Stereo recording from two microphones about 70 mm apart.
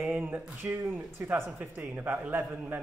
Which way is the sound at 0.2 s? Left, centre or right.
Right.